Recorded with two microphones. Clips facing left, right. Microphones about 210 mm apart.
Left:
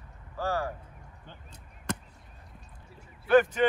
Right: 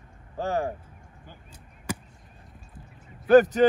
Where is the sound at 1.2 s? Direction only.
10° right (ahead or behind).